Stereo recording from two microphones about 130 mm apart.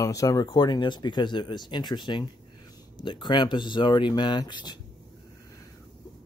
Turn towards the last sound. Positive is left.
turn(degrees=35)  # may be behind; listen again after turning